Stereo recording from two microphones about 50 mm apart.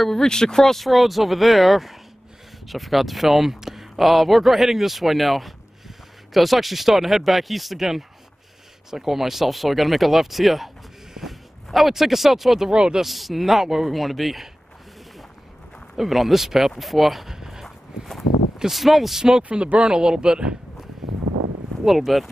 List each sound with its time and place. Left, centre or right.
0.0 s speech: centre
13.0 s speech: centre
16.0 s speech: centre
17.6 s a sound: centre
18.6 s speech: centre
21.8 s speech: centre